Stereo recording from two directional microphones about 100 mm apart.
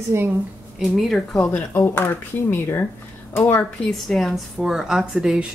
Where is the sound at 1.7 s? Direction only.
25° left (ahead or behind).